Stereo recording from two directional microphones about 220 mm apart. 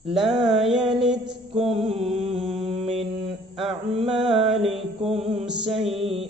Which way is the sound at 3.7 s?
25° right (ahead or behind).